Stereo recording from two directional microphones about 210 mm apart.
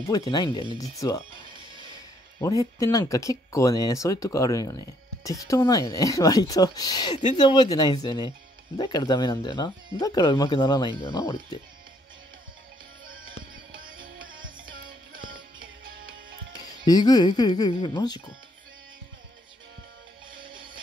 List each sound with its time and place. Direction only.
0.1 s speech: 20° left (ahead or behind)
2.4 s speech: 15° left (ahead or behind)
13.7 s music: 40° right (ahead or behind)
16.8 s speech: 20° left (ahead or behind)